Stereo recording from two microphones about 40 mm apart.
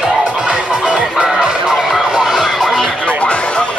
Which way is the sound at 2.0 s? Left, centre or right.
Centre.